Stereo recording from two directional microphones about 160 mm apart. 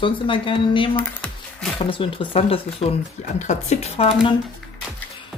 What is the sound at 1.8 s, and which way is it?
Speech, 35° left (ahead or behind).